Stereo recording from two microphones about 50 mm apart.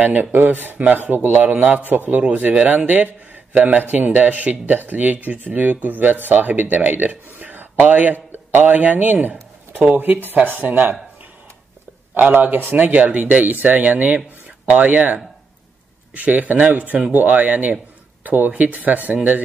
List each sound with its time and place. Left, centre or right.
0.0 s speech: right
9.9 s speech: right
12.1 s speech: right
16.2 s speech: right